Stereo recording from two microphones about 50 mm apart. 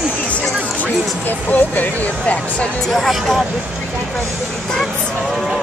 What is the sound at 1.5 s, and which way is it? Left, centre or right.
Speech, left.